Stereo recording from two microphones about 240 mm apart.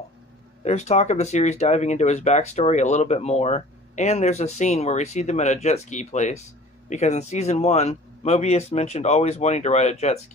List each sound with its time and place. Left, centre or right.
0.7 s speech: left